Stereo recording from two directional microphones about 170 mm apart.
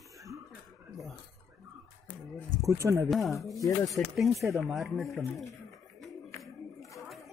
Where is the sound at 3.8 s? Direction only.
15° left (ahead or behind).